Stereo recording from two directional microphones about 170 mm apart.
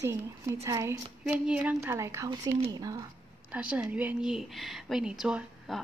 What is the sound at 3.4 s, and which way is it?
Speech, 10° right (ahead or behind).